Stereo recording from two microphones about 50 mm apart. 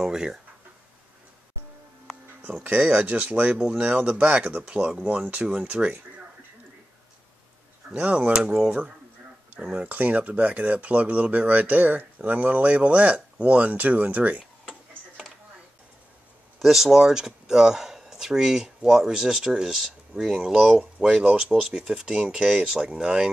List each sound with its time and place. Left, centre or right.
0.0 s speech: centre
2.6 s speech: right
4.6 s speech: centre
5.0 s speech: right
8.0 s speech: right
9.6 s speech: centre
9.8 s speech: right
16.5 s speech: centre